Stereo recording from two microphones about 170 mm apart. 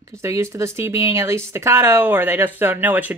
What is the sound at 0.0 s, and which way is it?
Speech, 15° right (ahead or behind).